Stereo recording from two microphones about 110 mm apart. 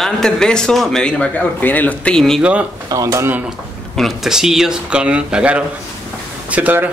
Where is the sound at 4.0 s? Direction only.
5° right (ahead or behind).